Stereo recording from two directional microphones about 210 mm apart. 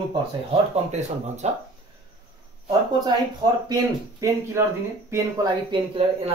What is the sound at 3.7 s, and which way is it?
Speech, 15° right (ahead or behind).